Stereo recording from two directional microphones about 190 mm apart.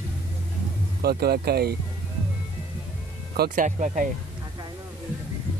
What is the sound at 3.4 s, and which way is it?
Speech, 45° right (ahead or behind).